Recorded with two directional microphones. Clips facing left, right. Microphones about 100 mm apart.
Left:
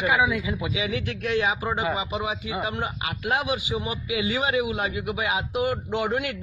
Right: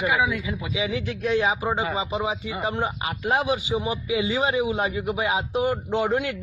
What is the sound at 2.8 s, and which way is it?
Speech, 35° right (ahead or behind).